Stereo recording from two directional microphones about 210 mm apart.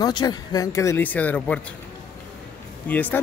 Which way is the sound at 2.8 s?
10° left (ahead or behind).